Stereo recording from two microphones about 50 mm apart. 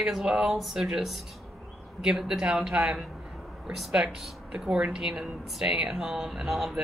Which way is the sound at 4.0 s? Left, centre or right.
Right.